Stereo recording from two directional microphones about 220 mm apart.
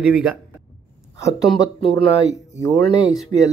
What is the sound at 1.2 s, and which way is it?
Speech, 25° left (ahead or behind).